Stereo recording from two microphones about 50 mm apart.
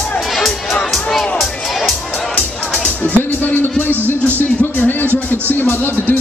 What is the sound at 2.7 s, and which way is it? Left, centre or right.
Music, left.